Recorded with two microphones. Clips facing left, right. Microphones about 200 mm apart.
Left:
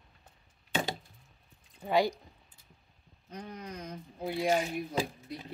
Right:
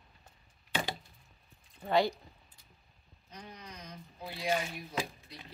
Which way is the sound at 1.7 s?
15° left (ahead or behind).